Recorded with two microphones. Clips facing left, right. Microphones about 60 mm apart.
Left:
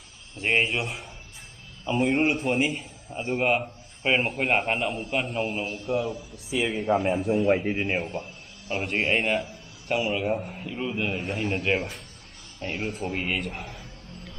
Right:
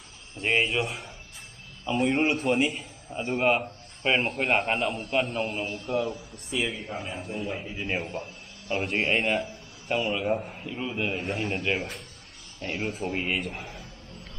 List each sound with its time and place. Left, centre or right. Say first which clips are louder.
0.4 s a man's voice: left 1 dB; centre
6.7 s speech: left 11 dB; left
7.9 s a sound: left 2 dB; centre
8.8 s a man's voice: left 1 dB; centre